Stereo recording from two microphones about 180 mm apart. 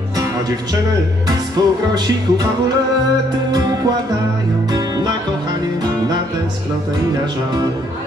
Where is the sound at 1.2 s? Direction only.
20° right (ahead or behind).